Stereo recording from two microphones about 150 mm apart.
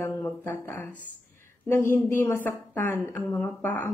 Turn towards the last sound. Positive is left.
turn(degrees=10)  # may be behind; listen again after turning